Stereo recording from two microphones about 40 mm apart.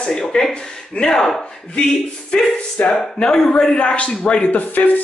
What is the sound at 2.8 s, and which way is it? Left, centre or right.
Speech, left.